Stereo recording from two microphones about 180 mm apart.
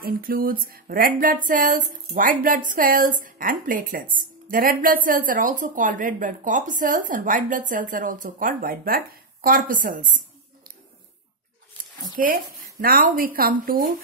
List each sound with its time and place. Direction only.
0.0 s speech: 55° right (ahead or behind)
12.2 s speech: 50° right (ahead or behind)